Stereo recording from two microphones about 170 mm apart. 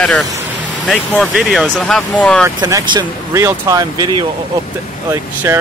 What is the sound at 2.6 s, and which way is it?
Speech, 20° right (ahead or behind).